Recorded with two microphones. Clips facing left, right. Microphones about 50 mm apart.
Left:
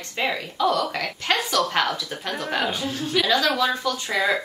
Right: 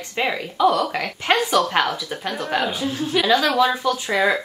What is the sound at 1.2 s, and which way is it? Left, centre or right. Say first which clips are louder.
Speech: right 4 dB; centre.